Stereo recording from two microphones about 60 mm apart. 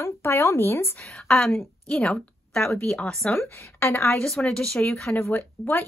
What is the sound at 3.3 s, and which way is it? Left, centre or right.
Speech, left.